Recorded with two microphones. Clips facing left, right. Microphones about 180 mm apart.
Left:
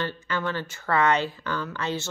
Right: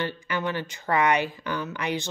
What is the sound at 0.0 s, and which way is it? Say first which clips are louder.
Speech: even; 15° right (ahead or behind).